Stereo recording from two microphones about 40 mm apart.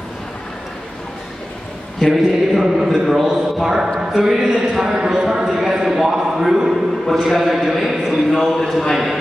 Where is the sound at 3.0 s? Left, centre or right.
Centre.